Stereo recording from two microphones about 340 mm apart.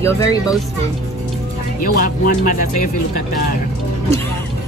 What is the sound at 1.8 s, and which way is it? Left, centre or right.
Speech, left.